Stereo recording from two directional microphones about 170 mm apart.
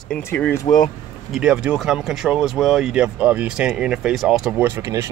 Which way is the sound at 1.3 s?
5° right (ahead or behind).